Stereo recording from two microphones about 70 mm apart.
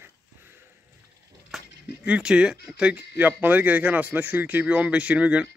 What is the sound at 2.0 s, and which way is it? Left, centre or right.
Speech, centre.